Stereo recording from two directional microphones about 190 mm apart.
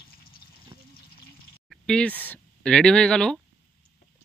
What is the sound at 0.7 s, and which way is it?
Water, 30° right (ahead or behind).